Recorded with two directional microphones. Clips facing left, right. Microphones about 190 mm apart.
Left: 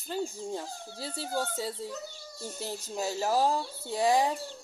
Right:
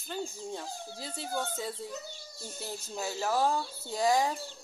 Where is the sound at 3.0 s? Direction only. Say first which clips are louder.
Left 2 dB; 35° left (ahead or behind).